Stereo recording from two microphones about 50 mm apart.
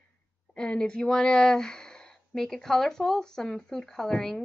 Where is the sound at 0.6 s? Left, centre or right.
Centre.